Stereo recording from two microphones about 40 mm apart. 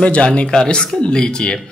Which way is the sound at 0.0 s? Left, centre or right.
Left.